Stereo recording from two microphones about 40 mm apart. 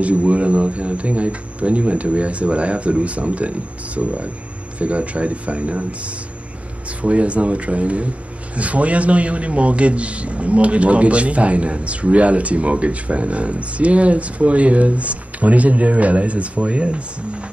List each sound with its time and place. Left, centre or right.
0.0 s a man's voice: right